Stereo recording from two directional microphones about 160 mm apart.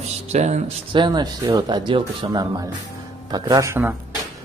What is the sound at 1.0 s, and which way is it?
Speech, 25° right (ahead or behind).